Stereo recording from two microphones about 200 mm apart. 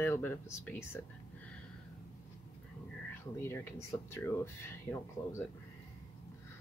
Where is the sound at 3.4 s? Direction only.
10° left (ahead or behind).